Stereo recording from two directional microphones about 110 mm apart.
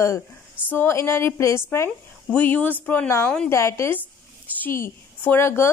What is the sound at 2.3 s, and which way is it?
A woman's voice, 15° left (ahead or behind).